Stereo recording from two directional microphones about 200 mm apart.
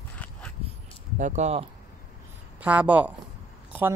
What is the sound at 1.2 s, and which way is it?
Speech, 35° right (ahead or behind).